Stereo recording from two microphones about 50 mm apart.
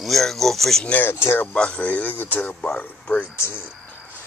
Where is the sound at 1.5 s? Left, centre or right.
Left.